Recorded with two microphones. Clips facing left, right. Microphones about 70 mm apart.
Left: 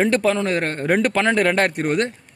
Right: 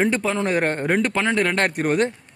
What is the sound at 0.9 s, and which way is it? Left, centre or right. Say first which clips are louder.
Speech: left 7 dB; centre.